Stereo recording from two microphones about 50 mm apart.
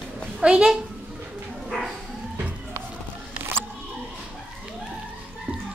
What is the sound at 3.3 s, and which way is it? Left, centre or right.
Music, right.